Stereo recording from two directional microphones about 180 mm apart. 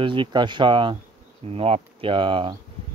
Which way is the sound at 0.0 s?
25° right (ahead or behind).